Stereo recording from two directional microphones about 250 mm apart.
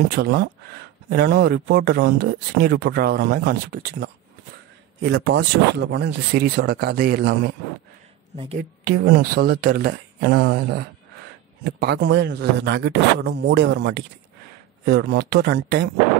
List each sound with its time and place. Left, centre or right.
0.1 s speech: right
8.5 s speech: right